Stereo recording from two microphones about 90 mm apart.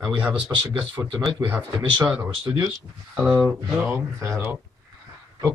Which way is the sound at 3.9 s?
35° right (ahead or behind).